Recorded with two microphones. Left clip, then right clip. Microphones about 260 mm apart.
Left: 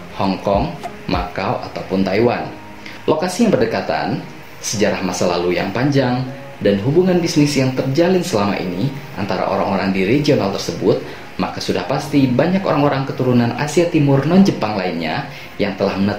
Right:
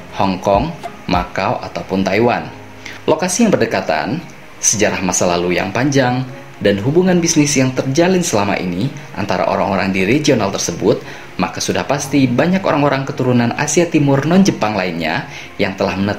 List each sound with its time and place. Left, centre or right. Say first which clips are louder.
0.2 s speech: right 3 dB; right